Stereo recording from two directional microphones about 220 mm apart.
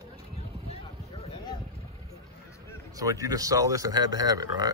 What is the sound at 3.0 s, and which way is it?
Speech, 15° right (ahead or behind).